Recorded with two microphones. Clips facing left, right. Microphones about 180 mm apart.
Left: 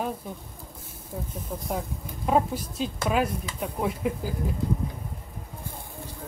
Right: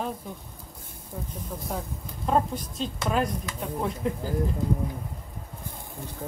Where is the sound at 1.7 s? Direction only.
5° left (ahead or behind).